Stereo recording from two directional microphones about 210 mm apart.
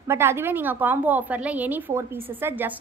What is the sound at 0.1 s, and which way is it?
A woman's voice, 10° right (ahead or behind).